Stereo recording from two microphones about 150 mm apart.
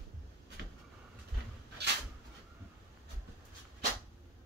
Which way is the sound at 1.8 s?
90° right.